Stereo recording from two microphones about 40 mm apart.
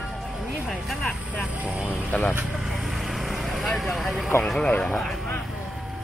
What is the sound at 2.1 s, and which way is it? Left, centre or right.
Speech, left.